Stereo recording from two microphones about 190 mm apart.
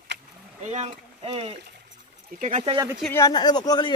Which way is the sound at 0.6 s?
35° right (ahead or behind).